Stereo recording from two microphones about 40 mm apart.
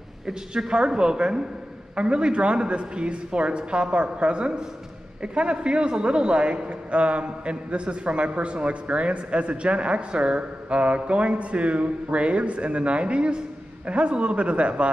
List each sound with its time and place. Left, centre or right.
0.6 s a man's voice: centre